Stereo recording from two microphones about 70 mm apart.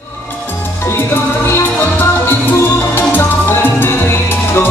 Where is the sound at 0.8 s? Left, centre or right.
Left.